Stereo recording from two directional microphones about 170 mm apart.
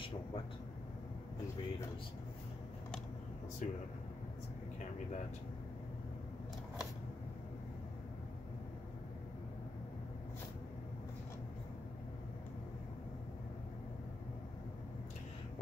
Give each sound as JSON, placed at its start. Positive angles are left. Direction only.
{"t": 3.6, "sound": "speech", "side_deg": 45}